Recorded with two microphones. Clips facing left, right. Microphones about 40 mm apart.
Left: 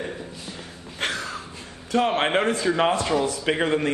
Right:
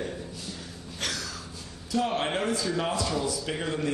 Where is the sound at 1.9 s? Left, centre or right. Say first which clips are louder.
Left 6 dB; left.